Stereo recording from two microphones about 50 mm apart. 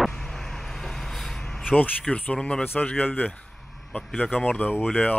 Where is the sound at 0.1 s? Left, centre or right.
Centre.